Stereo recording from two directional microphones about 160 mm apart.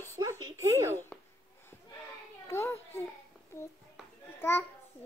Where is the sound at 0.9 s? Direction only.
15° left (ahead or behind).